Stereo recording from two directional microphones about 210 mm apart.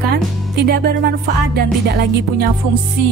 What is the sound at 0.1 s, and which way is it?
Speech, 50° right (ahead or behind).